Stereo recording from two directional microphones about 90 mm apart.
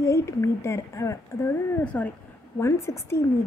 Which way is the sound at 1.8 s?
15° left (ahead or behind).